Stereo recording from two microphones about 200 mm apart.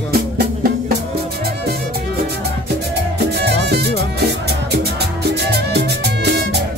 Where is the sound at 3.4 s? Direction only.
55° right (ahead or behind).